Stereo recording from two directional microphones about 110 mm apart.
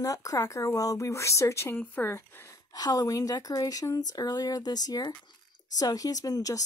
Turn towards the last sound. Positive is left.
turn(degrees=35)  # may be behind; listen again after turning